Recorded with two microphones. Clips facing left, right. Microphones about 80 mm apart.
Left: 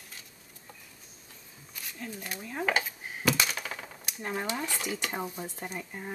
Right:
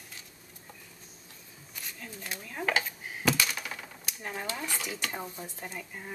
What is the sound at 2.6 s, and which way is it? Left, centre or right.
Dishes, centre.